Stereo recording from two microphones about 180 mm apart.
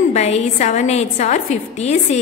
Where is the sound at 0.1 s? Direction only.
40° left (ahead or behind).